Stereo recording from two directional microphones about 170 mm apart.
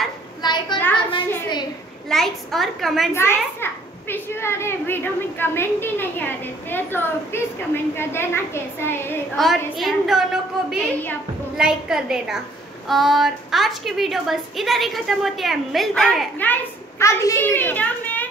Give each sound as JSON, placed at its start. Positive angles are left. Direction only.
{"t": 0.4, "sound": "a sound", "side_deg": 25}
{"t": 2.0, "sound": "a woman's voice", "side_deg": 0}
{"t": 3.1, "sound": "a child's voice", "side_deg": 15}
{"t": 9.4, "sound": "a woman's voice", "side_deg": 0}
{"t": 17.0, "sound": "a child's voice", "side_deg": 15}